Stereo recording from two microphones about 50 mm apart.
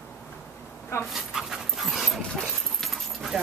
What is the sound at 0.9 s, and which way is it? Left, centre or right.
Dog, left.